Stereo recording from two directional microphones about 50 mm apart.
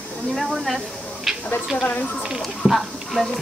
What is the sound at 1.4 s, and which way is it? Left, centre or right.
Speech, left.